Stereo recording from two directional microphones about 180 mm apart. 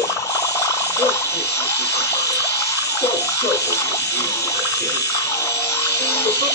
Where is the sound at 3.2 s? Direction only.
15° left (ahead or behind).